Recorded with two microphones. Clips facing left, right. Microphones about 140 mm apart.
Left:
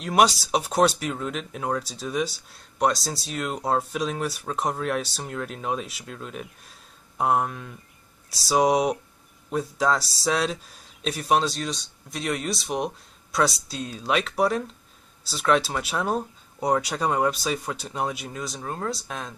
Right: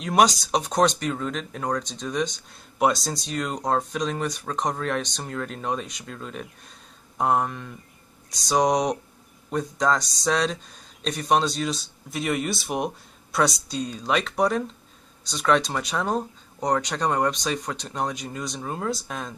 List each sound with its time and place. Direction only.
0.0 s speech: 5° left (ahead or behind)